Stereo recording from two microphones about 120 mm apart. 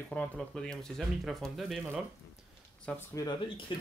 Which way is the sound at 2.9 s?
10° left (ahead or behind).